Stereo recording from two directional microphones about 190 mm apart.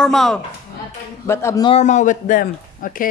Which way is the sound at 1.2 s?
15° left (ahead or behind).